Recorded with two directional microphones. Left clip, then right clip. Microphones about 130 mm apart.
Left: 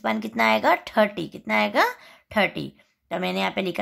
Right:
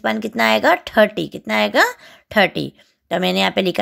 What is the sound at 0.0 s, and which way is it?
A woman's voice, 35° right (ahead or behind).